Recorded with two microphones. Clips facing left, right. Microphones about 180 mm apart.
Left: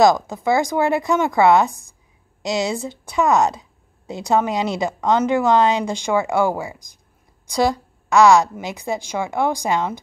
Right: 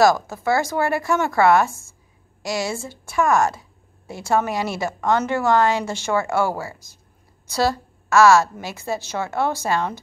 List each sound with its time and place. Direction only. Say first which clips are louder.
0.0 s a woman's voice: left 2 dB; 15° left (ahead or behind)